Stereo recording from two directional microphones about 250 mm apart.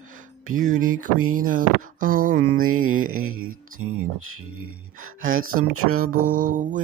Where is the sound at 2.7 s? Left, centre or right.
Right.